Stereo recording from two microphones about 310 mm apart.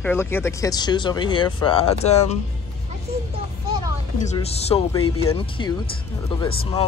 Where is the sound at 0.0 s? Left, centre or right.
Centre.